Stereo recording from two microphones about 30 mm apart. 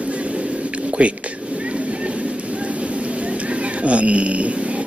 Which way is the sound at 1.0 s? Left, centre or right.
Right.